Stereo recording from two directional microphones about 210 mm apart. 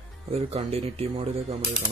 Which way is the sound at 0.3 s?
30° right (ahead or behind).